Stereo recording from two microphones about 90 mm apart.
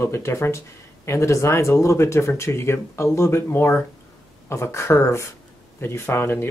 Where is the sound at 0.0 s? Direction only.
30° left (ahead or behind).